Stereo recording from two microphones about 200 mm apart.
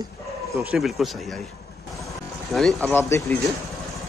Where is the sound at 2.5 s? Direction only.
5° left (ahead or behind).